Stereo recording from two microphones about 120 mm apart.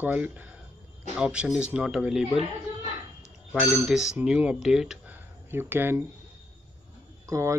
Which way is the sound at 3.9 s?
5° right (ahead or behind).